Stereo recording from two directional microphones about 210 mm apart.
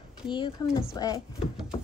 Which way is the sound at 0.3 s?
20° left (ahead or behind).